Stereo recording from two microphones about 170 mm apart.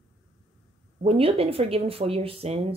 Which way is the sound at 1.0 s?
35° right (ahead or behind).